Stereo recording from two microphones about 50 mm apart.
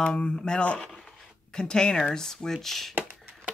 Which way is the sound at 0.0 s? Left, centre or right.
Centre.